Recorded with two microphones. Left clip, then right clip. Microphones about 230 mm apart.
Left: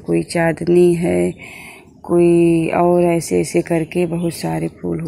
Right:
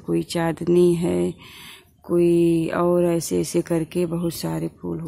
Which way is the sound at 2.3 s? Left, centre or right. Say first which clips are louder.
Left 5 dB; centre.